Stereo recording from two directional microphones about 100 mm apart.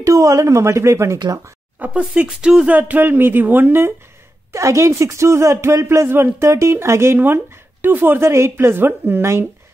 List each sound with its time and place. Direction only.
0.0 s a woman's voice: 30° right (ahead or behind)
1.8 s speech: 10° right (ahead or behind)
4.5 s speech: 30° right (ahead or behind)